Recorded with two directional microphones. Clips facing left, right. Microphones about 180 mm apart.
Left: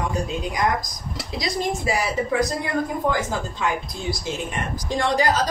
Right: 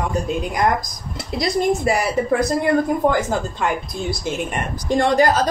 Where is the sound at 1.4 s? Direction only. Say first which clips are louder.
Right 7 dB; 55° right (ahead or behind).